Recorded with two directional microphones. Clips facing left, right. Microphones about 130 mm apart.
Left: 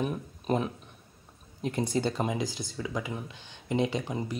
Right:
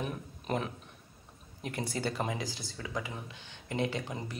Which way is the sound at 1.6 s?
25° left (ahead or behind).